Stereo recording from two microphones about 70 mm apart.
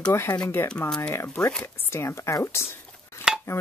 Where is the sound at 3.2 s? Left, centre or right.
Left.